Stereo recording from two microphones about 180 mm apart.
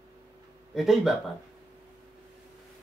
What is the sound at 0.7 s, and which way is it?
Speech, centre (ahead or behind).